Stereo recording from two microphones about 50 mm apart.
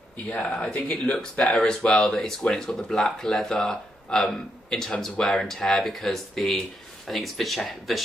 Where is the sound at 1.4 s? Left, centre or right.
Centre.